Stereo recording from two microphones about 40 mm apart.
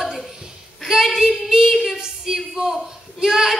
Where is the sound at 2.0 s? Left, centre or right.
Centre.